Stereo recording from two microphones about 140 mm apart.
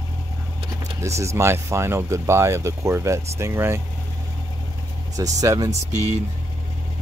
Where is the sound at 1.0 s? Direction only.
20° right (ahead or behind).